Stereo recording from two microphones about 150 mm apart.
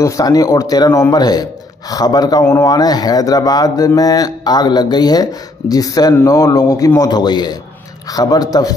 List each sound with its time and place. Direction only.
0.0 s speech: 25° left (ahead or behind)